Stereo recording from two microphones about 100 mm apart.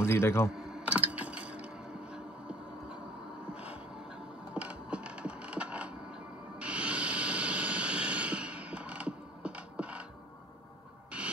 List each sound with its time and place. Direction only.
0.0 s speech: 25° left (ahead or behind)
0.5 s typing: 5° right (ahead or behind)
4.6 s a sound: 10° right (ahead or behind)